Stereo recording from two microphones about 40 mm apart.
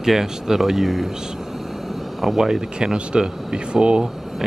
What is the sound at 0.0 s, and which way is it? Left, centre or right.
Speech, centre.